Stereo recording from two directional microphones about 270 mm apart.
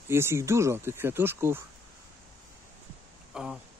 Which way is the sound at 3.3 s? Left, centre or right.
Centre.